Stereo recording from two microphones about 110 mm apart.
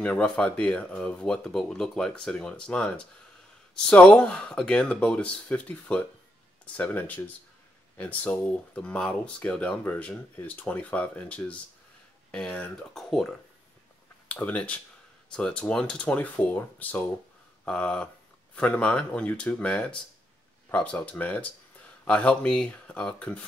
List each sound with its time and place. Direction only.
0.0 s speech: 10° left (ahead or behind)
14.3 s speech: 15° left (ahead or behind)